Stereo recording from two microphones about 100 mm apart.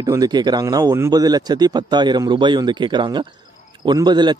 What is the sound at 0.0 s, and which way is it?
A man's voice, 40° right (ahead or behind).